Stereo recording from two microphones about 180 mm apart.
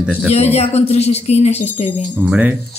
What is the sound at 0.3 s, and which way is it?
Speech, 35° left (ahead or behind).